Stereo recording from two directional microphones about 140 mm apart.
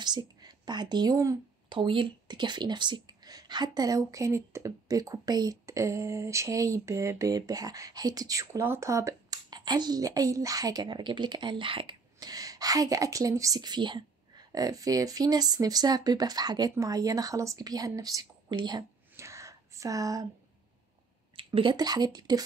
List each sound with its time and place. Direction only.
0.0 s speech: 30° right (ahead or behind)
1.7 s speech: 35° right (ahead or behind)
19.1 s a sound: 20° right (ahead or behind)
21.4 s speech: 40° right (ahead or behind)